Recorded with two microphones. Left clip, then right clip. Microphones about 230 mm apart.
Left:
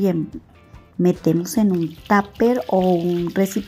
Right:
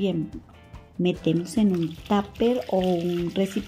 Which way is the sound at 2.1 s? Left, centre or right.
Centre.